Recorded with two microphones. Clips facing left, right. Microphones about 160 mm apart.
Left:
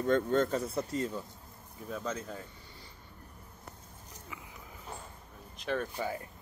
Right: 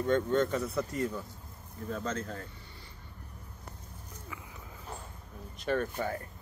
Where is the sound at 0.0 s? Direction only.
40° left (ahead or behind).